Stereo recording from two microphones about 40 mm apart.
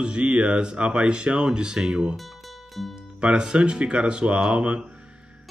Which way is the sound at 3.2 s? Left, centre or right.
Right.